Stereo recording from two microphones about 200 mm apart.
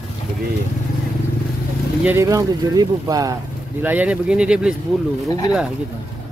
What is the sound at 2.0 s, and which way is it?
Speech, 15° right (ahead or behind).